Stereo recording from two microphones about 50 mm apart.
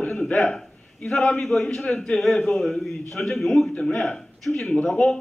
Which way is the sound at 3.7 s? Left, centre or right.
Left.